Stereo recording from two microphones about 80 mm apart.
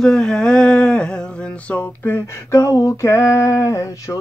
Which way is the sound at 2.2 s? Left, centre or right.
Left.